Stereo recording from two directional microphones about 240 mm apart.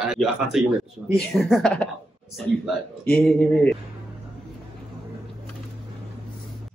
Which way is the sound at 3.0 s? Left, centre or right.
Centre.